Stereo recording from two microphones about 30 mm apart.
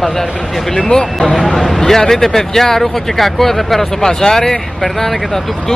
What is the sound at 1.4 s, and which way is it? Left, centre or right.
Speech, centre.